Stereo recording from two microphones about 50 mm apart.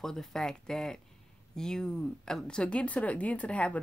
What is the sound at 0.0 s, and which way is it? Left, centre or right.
Speech, centre.